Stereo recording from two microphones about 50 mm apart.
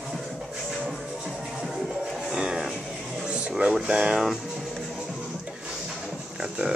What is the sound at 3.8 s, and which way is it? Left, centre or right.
Speech, centre.